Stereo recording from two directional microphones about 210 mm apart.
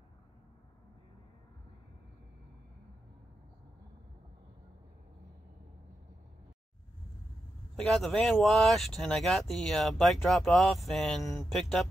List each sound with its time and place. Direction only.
7.7 s speech: centre (ahead or behind)